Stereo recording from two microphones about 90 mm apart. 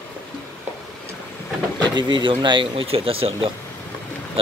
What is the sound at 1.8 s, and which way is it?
Speech, 60° right (ahead or behind).